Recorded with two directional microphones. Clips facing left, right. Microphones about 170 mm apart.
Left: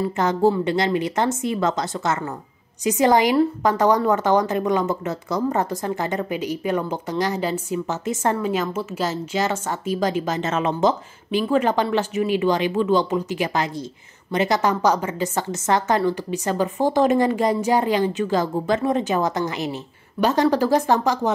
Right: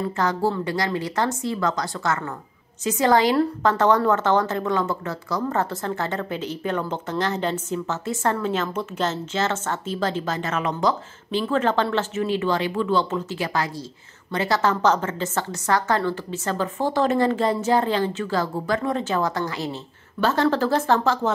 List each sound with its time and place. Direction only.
0.1 s a woman's voice: 20° left (ahead or behind)